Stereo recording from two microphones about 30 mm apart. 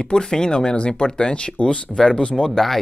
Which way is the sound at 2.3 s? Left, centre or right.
Centre.